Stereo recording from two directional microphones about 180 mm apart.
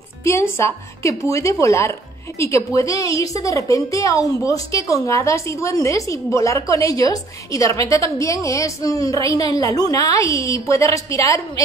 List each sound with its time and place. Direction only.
0.2 s a woman's voice: 15° left (ahead or behind)